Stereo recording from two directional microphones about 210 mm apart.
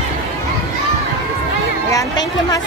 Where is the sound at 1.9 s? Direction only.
15° left (ahead or behind).